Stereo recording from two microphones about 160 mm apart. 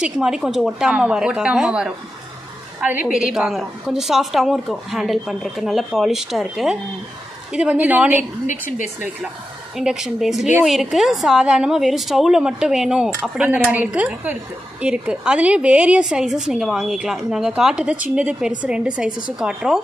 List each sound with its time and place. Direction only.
0.0 s a woman's voice: 5° right (ahead or behind)
8.5 s speech: 50° left (ahead or behind)
9.8 s a woman's voice: 5° right (ahead or behind)